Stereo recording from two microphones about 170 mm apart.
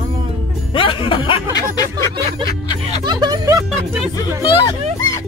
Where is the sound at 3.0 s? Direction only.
25° right (ahead or behind).